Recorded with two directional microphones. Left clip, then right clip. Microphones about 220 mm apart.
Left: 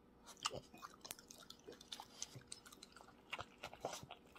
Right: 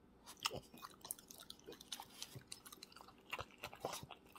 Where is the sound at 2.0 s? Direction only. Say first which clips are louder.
Even; 15° right (ahead or behind).